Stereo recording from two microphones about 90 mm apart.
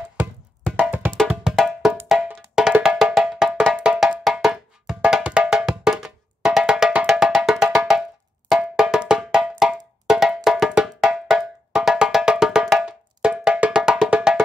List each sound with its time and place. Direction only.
0.7 s music: 20° right (ahead or behind)
1.5 s music: 5° left (ahead or behind)
1.9 s music: 10° right (ahead or behind)
2.5 s percussion: 5° right (ahead or behind)
3.2 s cowbell: 5° right (ahead or behind)
3.7 s music: 10° right (ahead or behind)
7.1 s cowbell: 5° right (ahead or behind)